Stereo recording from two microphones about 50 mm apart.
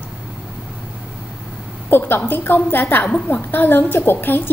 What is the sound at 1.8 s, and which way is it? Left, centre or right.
A woman's voice, left.